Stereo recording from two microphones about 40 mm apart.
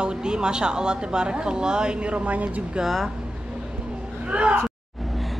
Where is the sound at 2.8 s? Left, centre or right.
Centre.